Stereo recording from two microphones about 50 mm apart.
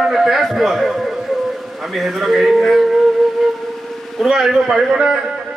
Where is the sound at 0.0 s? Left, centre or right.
Centre.